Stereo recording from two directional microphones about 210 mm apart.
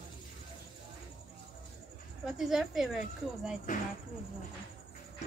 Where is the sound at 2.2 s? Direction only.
Centre (ahead or behind).